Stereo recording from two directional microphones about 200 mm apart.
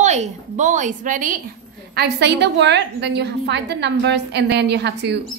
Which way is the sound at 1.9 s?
55° right (ahead or behind).